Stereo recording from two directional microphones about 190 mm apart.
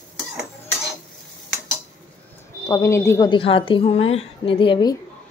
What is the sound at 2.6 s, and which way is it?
Speech, 15° left (ahead or behind).